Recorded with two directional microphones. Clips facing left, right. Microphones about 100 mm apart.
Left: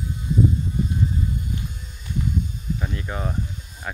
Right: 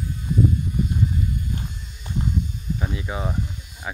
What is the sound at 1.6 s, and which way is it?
Horse, 35° right (ahead or behind).